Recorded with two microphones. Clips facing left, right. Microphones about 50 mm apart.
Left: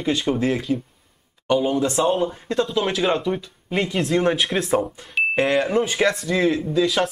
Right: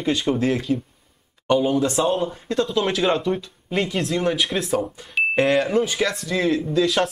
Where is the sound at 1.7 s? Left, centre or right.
Centre.